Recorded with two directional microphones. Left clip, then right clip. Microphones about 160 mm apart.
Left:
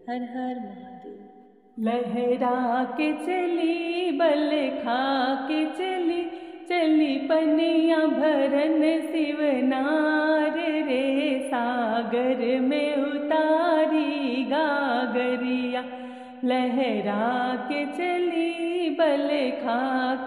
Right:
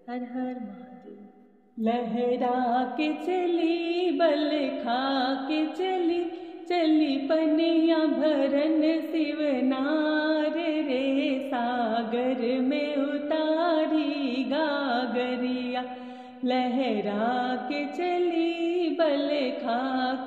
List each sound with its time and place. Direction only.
1.9 s music: 25° left (ahead or behind)